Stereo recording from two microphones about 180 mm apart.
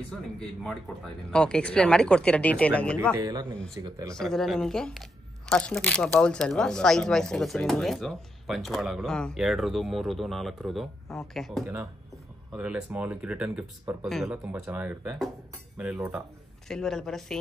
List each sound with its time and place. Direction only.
0.4 s speech: 5° left (ahead or behind)
3.2 s speech: 20° right (ahead or behind)
4.1 s speech: 5° left (ahead or behind)